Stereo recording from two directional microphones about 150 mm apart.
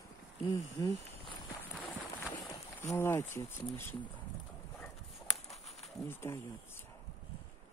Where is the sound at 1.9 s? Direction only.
20° left (ahead or behind).